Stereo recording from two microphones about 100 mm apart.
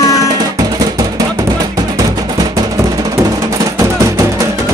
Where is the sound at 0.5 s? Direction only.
40° right (ahead or behind).